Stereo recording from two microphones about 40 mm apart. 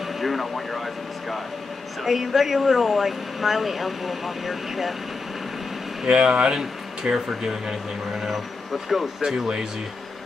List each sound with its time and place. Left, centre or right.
0.0 s a sound: centre
2.0 s speech: centre
6.0 s speech: right
8.8 s speech: centre